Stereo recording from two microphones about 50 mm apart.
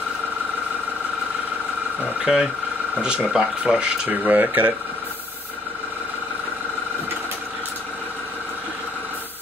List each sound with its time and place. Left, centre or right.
2.3 s speech: centre
4.2 s speech: right